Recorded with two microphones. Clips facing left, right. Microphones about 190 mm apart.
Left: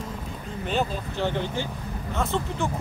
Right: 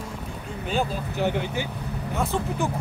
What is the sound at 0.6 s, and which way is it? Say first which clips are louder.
Speech: even; 10° right (ahead or behind).